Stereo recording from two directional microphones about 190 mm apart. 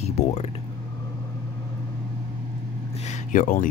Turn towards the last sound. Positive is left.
turn(degrees=45)  # may be behind; listen again after turning